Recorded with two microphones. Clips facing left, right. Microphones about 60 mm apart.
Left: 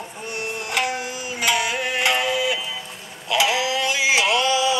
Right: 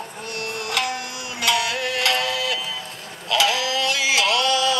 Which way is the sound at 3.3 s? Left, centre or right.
Centre.